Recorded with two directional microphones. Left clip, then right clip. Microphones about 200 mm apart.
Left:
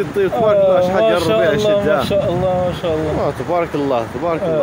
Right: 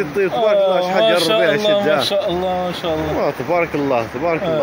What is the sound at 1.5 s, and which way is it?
Speech, 45° left (ahead or behind).